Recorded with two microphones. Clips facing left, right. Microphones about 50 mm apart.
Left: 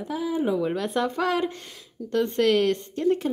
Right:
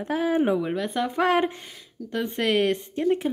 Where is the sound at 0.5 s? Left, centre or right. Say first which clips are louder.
Left 1 dB; centre.